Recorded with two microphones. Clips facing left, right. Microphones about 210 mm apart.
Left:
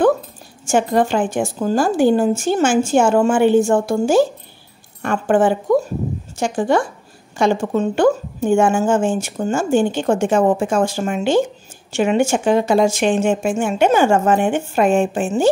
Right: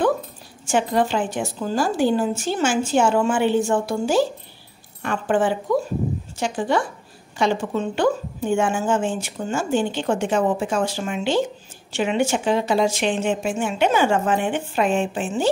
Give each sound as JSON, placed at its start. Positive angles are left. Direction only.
{"t": 0.7, "sound": "a woman's voice", "side_deg": 45}